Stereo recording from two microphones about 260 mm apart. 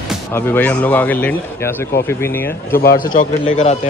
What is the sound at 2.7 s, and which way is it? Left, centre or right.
A man's voice, left.